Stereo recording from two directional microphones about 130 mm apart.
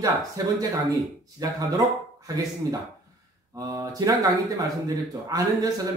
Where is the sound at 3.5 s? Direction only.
25° right (ahead or behind).